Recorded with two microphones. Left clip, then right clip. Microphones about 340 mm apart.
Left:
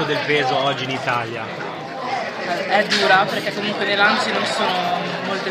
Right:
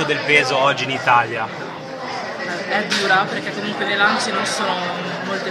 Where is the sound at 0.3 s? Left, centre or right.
Right.